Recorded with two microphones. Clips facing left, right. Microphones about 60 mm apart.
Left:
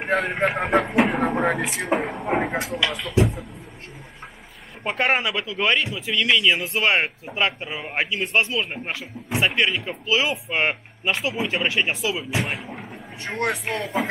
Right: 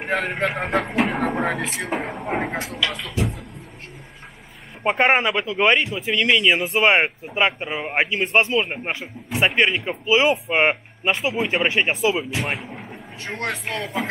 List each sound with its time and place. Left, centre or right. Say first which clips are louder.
0.0 s speech: left 1 dB; centre
4.8 s a man's voice: right 4 dB; right
6.8 s a man's voice: right 4 dB; right
12.4 s speech: right 2 dB; centre